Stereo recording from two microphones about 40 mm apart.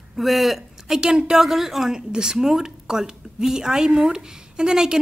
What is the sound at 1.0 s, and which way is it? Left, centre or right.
A woman's voice, centre.